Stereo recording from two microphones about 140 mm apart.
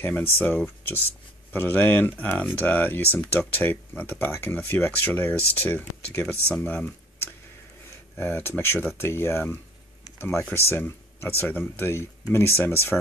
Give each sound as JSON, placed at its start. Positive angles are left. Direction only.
{"t": 0.0, "sound": "speech", "side_deg": 15}
{"t": 8.2, "sound": "speech", "side_deg": 15}